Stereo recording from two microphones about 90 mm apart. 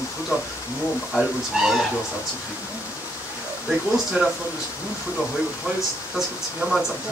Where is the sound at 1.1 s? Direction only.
Centre (ahead or behind).